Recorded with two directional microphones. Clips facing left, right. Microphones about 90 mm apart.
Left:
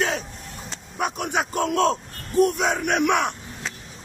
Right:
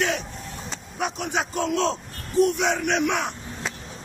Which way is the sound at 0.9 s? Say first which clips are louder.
Left 2 dB; 50° left (ahead or behind).